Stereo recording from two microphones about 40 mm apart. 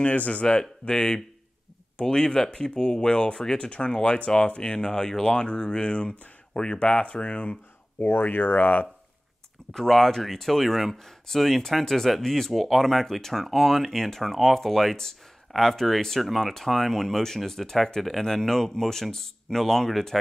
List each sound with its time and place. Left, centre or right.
0.0 s speech: left
8.0 s speech: left
9.8 s speech: centre